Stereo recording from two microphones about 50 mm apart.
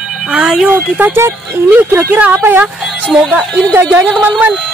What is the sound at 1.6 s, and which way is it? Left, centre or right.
Speech, right.